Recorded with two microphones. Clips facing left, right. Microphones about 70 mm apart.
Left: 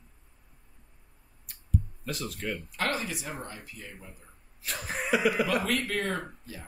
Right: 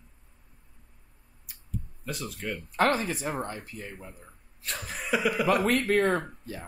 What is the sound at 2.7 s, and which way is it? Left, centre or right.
Speech, right.